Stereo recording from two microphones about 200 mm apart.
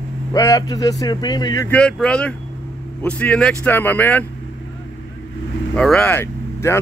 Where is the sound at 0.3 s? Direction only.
20° left (ahead or behind).